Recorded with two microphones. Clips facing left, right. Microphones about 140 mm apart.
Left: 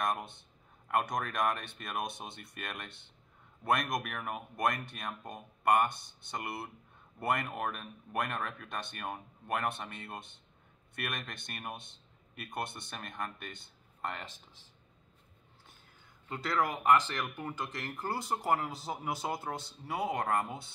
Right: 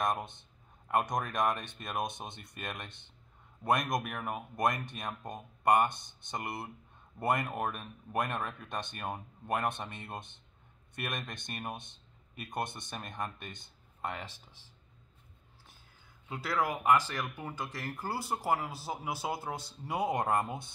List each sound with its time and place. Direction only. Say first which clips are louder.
0.0 s speech: right 1 dB; 20° right (ahead or behind)
14.0 s speech: right 1 dB; 5° right (ahead or behind)
16.3 s speech: even; 10° right (ahead or behind)
19.9 s speech: right 2 dB; 20° right (ahead or behind)